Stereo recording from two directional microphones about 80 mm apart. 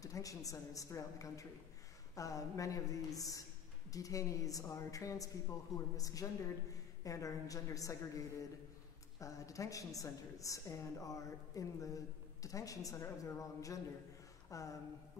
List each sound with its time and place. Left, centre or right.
0.0 s a woman's voice: left
9.2 s a woman's voice: left